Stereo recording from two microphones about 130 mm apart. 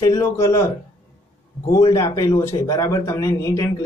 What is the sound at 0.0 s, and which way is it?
Speech, 25° left (ahead or behind).